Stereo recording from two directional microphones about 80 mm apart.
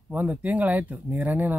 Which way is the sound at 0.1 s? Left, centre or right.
Right.